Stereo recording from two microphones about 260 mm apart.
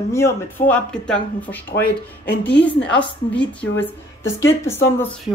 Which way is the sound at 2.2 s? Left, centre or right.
Left.